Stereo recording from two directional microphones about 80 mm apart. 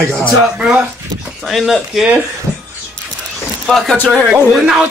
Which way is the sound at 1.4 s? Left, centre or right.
Centre.